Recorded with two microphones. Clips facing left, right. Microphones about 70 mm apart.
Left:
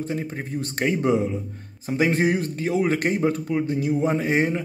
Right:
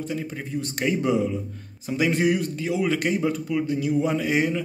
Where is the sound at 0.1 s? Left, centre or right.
Left.